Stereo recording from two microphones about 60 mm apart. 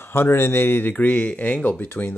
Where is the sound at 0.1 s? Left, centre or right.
Left.